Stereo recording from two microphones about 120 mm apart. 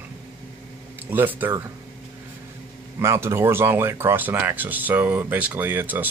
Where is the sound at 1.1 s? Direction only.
15° right (ahead or behind).